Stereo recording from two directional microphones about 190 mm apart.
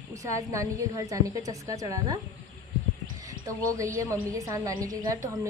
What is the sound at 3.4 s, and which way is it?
A woman's voice, 15° right (ahead or behind).